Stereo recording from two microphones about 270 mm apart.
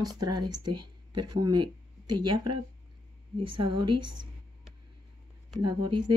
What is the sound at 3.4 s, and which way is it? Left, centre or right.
Speech, right.